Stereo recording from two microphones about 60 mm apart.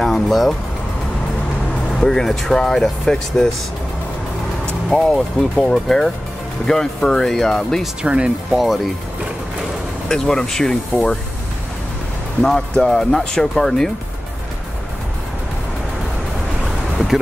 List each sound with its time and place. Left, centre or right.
0.0 s speech: centre
2.0 s speech: centre
4.8 s speech: centre
8.0 s speech: centre
8.5 s speech: centre
10.0 s speech: centre
12.4 s speech: centre
16.6 s a sound: centre